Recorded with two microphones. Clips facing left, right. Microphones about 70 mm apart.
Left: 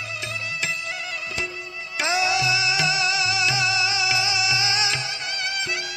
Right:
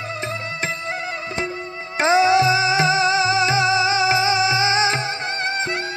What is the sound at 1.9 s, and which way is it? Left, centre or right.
Music, right.